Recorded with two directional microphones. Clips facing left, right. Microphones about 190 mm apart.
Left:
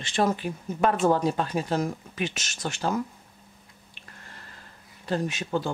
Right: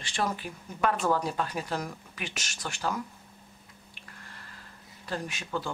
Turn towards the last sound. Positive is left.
turn(degrees=25)  # may be behind; listen again after turning